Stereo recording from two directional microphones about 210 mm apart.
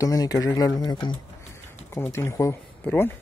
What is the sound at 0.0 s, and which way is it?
Speech, 15° left (ahead or behind).